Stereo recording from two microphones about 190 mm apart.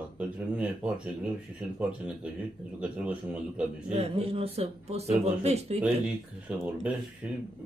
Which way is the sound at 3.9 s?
30° right (ahead or behind).